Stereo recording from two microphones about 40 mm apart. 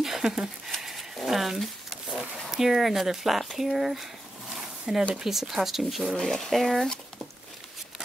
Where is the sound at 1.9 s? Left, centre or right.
Centre.